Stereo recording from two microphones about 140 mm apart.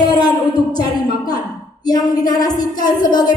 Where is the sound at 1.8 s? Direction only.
30° left (ahead or behind).